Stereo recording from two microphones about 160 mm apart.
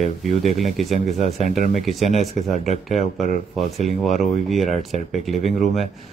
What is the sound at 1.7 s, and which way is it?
Speech, centre (ahead or behind).